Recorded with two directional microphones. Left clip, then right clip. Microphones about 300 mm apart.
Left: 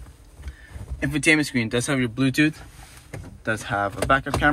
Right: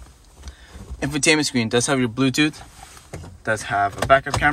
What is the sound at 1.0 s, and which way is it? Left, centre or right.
Speech, centre.